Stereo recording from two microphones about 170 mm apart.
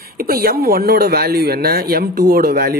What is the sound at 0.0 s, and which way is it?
A woman's voice, 60° right (ahead or behind).